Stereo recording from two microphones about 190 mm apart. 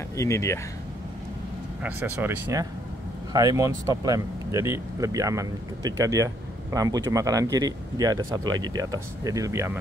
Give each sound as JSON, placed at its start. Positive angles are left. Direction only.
{"t": 0.1, "sound": "speech", "side_deg": 15}
{"t": 1.8, "sound": "speech", "side_deg": -10}